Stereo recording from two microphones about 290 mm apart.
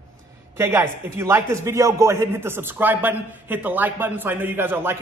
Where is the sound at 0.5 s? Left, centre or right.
Centre.